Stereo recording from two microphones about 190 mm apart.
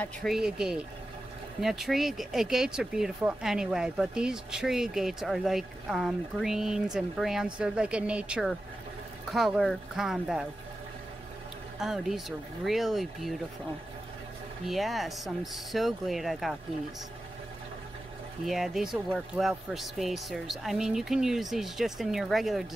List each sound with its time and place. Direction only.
0.0 s speech: centre (ahead or behind)
11.8 s speech: centre (ahead or behind)
14.7 s speech: centre (ahead or behind)
18.4 s speech: centre (ahead or behind)